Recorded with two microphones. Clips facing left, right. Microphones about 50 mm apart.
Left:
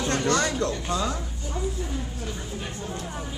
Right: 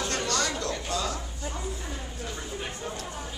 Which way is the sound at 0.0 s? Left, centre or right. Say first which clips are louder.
Left 5 dB; left.